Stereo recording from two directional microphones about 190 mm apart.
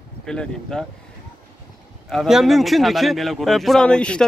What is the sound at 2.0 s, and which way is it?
Speech, centre (ahead or behind).